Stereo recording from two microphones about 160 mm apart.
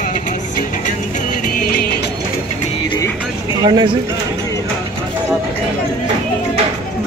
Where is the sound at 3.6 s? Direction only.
25° right (ahead or behind).